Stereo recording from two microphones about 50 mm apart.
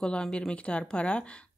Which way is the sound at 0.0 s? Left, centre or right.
Centre.